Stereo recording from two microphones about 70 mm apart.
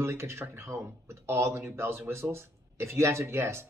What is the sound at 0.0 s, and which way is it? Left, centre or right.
Speech, right.